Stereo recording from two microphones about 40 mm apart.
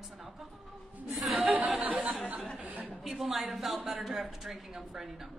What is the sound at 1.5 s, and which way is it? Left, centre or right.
Chatter, right.